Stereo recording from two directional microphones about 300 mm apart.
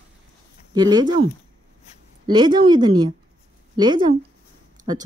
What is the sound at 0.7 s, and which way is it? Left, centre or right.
Speech, centre.